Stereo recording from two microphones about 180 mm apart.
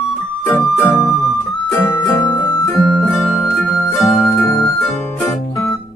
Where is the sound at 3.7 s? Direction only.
10° left (ahead or behind).